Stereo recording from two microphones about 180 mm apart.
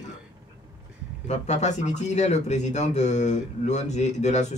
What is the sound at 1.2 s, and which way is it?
Speech, 40° left (ahead or behind).